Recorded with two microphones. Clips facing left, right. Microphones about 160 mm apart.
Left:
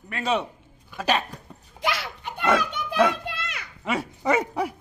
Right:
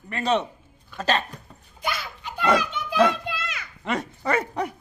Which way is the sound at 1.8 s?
85° left.